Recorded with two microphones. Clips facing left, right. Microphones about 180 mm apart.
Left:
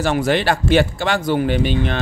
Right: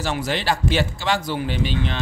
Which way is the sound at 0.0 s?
55° left (ahead or behind).